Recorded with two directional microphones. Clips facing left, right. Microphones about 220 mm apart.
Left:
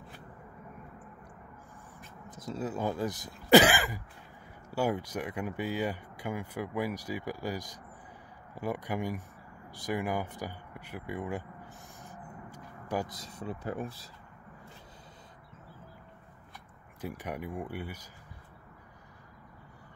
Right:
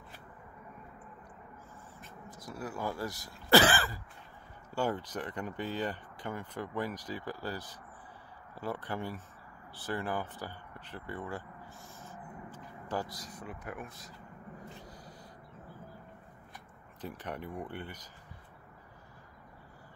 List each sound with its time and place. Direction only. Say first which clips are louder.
2.0 s speech: left 1 dB; 20° left (ahead or behind)
12.0 s a sound: even; 15° left (ahead or behind); by 14.1 s 30° left (ahead or behind)
17.0 s speech: left 3 dB; 10° left (ahead or behind)